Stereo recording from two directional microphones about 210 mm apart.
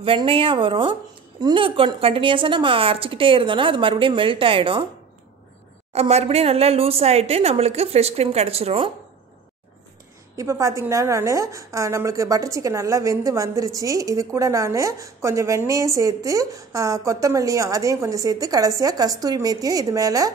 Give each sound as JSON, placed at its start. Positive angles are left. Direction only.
{"t": 0.0, "sound": "a woman's voice", "side_deg": -25}
{"t": 5.9, "sound": "a woman's voice", "side_deg": -30}
{"t": 10.3, "sound": "a woman's voice", "side_deg": -15}